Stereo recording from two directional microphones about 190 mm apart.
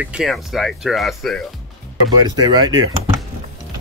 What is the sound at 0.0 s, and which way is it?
Speech, 5° right (ahead or behind).